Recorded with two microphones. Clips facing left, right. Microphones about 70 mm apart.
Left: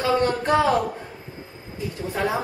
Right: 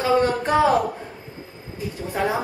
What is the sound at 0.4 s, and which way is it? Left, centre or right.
Speech, centre.